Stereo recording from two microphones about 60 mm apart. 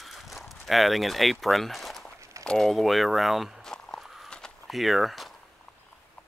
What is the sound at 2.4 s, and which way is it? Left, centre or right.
Speech, centre.